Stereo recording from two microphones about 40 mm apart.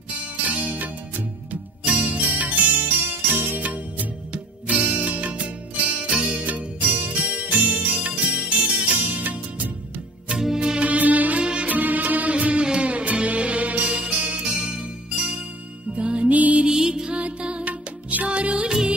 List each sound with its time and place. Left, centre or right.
0.5 s music: right
1.9 s music: right
2.8 s music: right
6.4 s music: right
9.1 s music: right
10.6 s music: right
10.9 s music: right
16.0 s music: right
16.6 s music: centre
18.7 s music: centre